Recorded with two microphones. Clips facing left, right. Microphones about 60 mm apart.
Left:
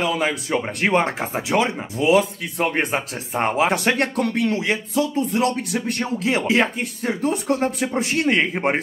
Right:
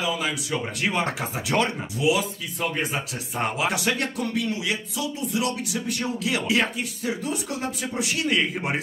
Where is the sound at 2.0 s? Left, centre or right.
Left.